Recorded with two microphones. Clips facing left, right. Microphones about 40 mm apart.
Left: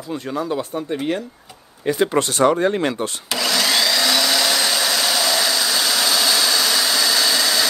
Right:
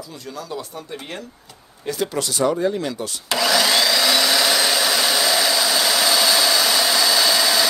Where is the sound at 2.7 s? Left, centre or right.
Left.